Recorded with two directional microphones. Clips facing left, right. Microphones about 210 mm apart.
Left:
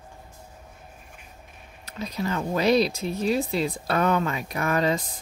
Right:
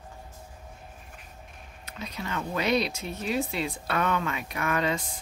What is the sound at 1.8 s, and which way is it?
Speech, 35° left (ahead or behind).